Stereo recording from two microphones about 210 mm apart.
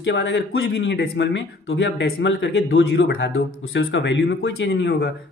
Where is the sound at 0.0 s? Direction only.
55° left (ahead or behind).